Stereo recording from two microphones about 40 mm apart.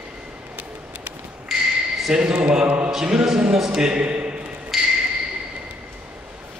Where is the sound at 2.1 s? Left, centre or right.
Right.